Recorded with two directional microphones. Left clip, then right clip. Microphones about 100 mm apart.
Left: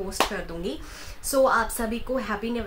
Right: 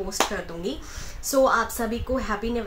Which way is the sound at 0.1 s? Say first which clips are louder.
Even; 5° left (ahead or behind).